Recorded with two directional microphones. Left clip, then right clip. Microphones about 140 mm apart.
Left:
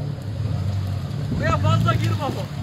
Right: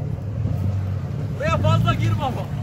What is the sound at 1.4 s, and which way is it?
Vehicle, 90° right.